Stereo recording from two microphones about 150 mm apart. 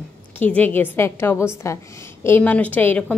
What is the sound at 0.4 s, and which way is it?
A woman's voice, 10° left (ahead or behind).